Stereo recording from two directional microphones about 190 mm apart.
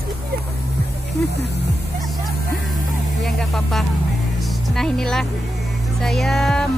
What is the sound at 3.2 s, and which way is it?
Speech, centre (ahead or behind).